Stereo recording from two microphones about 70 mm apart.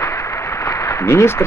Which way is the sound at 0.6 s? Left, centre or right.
Left.